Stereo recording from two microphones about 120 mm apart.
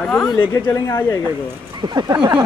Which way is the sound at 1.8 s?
35° right (ahead or behind).